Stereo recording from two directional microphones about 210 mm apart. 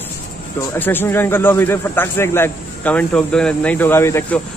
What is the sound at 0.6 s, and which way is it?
Speech, 10° left (ahead or behind).